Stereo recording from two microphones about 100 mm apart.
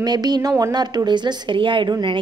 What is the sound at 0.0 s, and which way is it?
A woman's voice, 45° right (ahead or behind).